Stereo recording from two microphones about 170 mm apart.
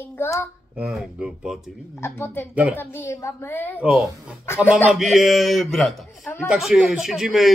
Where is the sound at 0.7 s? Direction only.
Centre (ahead or behind).